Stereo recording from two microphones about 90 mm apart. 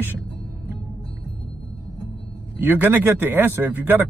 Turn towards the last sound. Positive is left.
turn(degrees=-25)  # may be behind; listen again after turning